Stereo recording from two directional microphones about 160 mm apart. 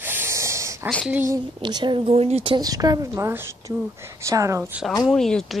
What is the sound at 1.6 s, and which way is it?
A woman's voice, 25° right (ahead or behind).